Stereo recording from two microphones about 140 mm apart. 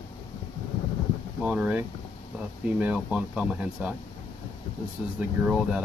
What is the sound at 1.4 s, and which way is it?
Speech, 10° right (ahead or behind).